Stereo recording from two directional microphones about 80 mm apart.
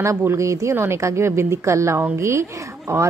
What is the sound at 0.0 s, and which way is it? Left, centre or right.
A woman's voice, right.